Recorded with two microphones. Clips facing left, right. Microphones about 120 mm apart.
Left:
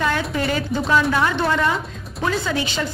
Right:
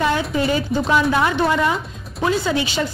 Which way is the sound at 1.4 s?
10° right (ahead or behind).